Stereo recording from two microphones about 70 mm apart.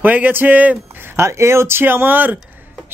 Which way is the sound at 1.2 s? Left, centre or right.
Right.